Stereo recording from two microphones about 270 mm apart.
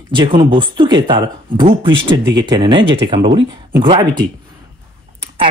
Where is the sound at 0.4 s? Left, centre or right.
Centre.